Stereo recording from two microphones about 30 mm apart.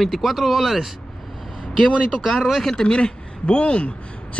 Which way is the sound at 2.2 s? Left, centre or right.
Centre.